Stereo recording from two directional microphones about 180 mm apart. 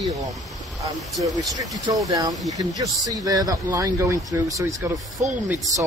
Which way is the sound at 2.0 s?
20° right (ahead or behind).